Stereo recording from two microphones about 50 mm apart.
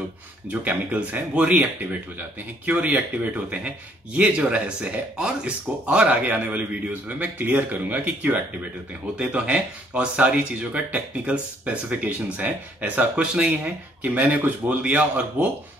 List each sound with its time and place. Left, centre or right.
0.5 s a man's voice: right
2.9 s speech: right
5.1 s speech: centre
6.2 s a man's voice: right